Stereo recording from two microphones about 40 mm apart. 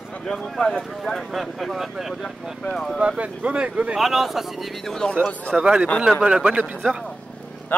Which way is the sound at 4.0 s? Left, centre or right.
Centre.